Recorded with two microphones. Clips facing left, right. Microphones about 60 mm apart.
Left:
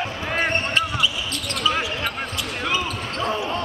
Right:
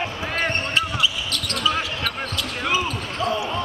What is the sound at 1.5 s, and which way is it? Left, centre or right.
Basketball bounce, centre.